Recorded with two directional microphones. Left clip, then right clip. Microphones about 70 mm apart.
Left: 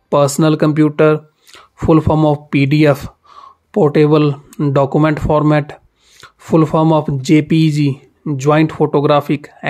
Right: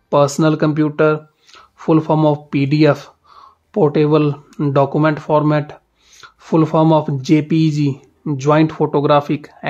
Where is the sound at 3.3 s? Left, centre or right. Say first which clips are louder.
Left 4 dB; left.